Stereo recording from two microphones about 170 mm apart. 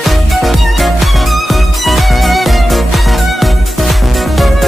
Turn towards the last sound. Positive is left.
turn(degrees=0)  # may be behind; listen again after turning